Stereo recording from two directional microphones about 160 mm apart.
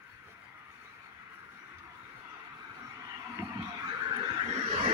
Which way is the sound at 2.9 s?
20° right (ahead or behind).